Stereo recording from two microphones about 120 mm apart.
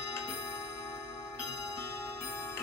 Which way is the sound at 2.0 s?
25° left (ahead or behind).